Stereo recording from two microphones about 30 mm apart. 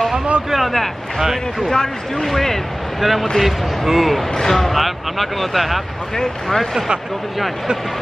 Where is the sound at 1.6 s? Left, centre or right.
Left.